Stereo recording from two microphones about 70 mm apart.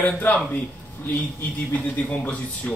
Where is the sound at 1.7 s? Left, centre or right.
Left.